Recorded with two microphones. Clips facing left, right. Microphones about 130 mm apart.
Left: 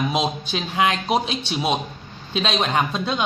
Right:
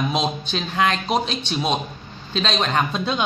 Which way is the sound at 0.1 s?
5° left (ahead or behind).